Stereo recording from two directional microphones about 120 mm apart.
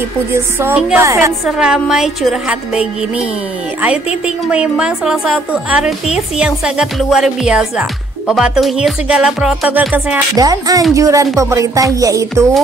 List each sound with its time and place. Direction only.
0.3 s music: 20° right (ahead or behind)
1.4 s a woman's voice: 5° right (ahead or behind)
4.5 s a woman's voice: 10° right (ahead or behind)
10.3 s speech: 30° right (ahead or behind)
10.9 s music: 25° right (ahead or behind)